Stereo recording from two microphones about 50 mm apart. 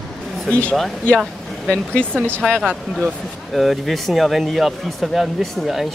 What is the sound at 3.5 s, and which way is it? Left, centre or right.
Speech, centre.